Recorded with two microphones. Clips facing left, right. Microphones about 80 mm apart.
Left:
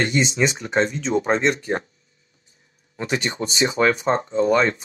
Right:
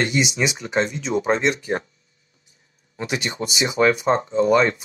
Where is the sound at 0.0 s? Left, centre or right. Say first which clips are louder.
Left 1 dB; left.